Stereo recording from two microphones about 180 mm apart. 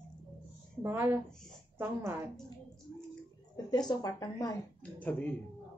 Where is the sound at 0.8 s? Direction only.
15° right (ahead or behind).